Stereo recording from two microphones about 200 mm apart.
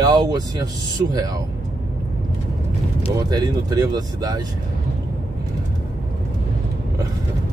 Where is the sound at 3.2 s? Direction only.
20° right (ahead or behind).